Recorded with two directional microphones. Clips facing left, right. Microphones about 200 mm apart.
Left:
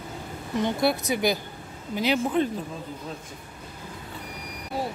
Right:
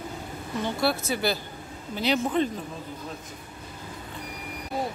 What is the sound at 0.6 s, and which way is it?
Speech, 20° left (ahead or behind).